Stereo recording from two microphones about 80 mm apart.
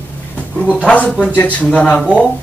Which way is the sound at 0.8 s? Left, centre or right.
Centre.